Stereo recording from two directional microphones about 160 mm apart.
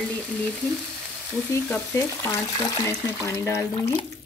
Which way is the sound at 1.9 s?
20° left (ahead or behind).